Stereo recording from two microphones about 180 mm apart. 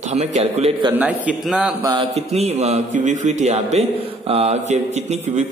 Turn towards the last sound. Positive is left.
turn(degrees=-40)  # may be behind; listen again after turning